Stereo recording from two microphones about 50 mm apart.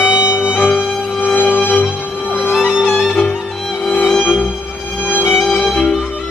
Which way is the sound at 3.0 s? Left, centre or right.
Centre.